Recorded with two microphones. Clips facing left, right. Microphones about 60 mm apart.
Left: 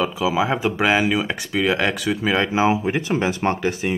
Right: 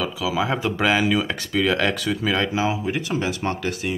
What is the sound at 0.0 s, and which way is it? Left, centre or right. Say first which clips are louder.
Speech: left 3 dB; left.